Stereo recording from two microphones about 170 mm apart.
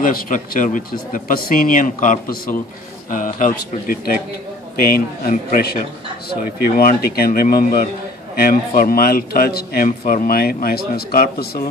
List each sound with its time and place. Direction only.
0.0 s a man's voice: 55° left (ahead or behind)